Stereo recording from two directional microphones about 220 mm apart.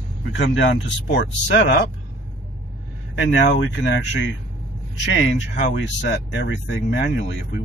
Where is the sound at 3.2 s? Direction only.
55° left (ahead or behind).